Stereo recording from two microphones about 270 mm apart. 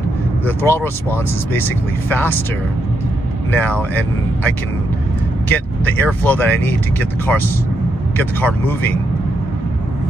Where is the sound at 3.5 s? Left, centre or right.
Centre.